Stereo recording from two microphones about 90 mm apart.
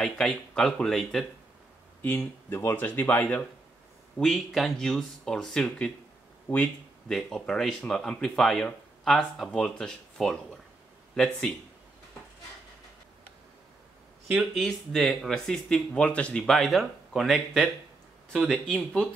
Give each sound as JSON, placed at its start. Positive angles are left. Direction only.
{"t": 0.0, "sound": "speech", "side_deg": 5}
{"t": 2.1, "sound": "speech", "side_deg": 30}
{"t": 2.7, "sound": "speech", "side_deg": 20}
{"t": 4.2, "sound": "speech", "side_deg": 0}
{"t": 6.5, "sound": "speech", "side_deg": 20}
{"t": 7.1, "sound": "speech", "side_deg": 5}
{"t": 14.2, "sound": "speech", "side_deg": 0}